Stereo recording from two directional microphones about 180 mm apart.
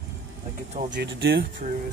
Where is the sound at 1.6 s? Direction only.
50° right (ahead or behind).